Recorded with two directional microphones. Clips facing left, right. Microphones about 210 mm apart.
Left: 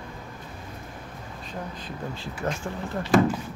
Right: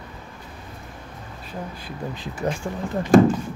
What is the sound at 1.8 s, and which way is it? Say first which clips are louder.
Speech: right 2 dB; 15° right (ahead or behind).